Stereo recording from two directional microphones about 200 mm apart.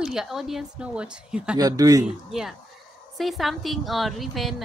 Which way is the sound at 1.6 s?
20° right (ahead or behind).